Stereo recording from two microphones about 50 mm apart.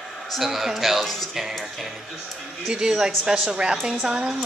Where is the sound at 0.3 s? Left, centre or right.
Centre.